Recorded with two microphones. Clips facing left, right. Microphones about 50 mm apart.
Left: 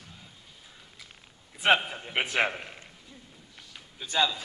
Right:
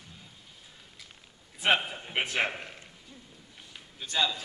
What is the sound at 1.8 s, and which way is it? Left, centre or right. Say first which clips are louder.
Speech: left 1 dB; centre.